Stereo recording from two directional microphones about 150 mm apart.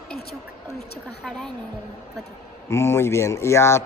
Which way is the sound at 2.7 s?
15° left (ahead or behind).